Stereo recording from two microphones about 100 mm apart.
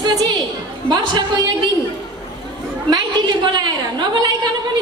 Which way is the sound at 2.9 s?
45° right (ahead or behind).